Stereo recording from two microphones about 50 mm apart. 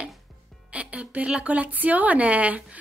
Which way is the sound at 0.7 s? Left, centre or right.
Right.